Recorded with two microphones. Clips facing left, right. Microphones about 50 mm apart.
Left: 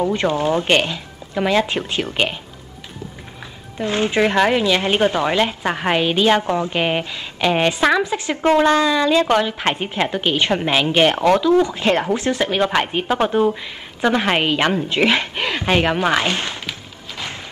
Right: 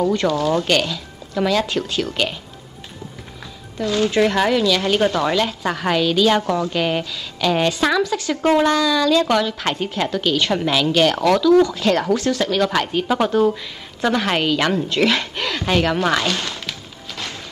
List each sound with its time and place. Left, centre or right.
0.0 s speech: left
3.7 s speech: left